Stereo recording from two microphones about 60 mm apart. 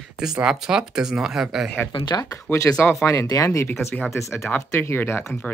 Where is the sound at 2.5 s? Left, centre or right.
Left.